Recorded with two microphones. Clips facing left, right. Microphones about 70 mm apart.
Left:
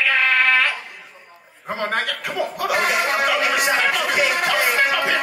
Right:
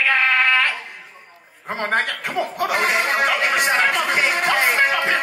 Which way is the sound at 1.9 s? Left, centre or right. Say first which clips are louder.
Right 2 dB; right.